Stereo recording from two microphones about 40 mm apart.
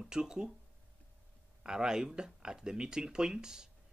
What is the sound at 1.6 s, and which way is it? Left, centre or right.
Speech, centre.